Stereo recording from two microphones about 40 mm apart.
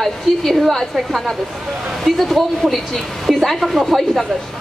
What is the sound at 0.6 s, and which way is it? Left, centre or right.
A woman's voice, centre.